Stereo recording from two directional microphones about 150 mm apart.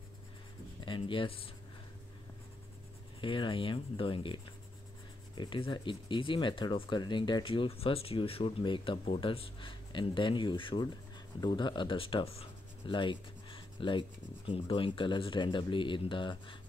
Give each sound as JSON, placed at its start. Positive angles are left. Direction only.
{"t": 0.8, "sound": "speech", "side_deg": 35}
{"t": 3.2, "sound": "speech", "side_deg": 35}